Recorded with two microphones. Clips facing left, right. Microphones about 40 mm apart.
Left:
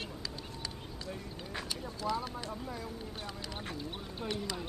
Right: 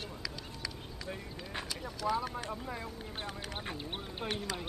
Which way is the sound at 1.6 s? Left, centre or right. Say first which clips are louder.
Right 2 dB; right.